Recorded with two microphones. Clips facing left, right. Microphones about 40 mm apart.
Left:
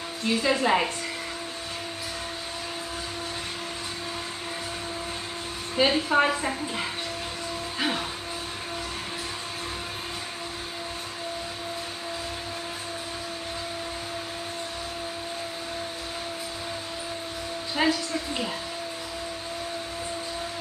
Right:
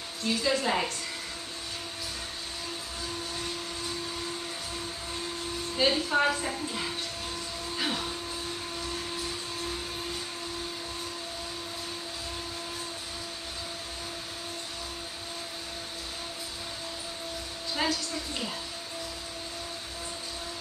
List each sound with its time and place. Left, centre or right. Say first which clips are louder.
0.2 s a woman's voice: left 4 dB; left
5.8 s a woman's voice: left 4 dB; left
17.7 s a woman's voice: left 5 dB; left